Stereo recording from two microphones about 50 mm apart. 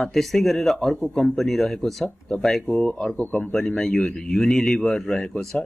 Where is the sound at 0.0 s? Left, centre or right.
Centre.